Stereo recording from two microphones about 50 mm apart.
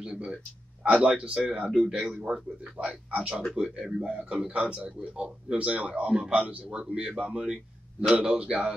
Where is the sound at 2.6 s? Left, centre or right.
Right.